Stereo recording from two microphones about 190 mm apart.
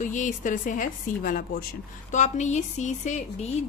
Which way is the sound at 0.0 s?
40° left (ahead or behind).